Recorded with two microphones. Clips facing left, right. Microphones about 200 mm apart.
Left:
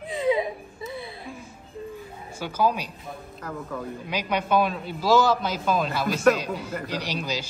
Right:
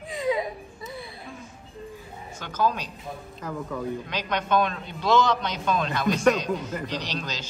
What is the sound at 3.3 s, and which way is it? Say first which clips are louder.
A man's voice: right 2 dB; centre (ahead or behind).